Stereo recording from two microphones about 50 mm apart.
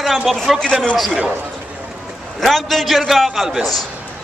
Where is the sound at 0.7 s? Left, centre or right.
Centre.